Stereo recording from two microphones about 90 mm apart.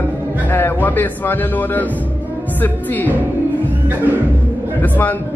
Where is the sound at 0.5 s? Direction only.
25° left (ahead or behind).